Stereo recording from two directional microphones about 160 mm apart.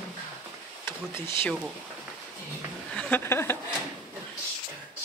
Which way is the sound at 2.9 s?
10° left (ahead or behind).